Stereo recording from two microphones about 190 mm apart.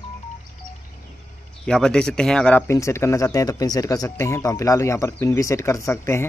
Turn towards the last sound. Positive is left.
turn(degrees=15)  # may be behind; listen again after turning